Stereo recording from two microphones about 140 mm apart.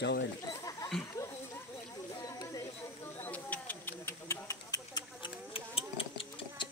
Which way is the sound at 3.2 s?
10° left (ahead or behind).